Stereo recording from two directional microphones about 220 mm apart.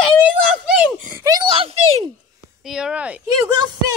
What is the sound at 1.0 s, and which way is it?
A child's voice, 15° right (ahead or behind).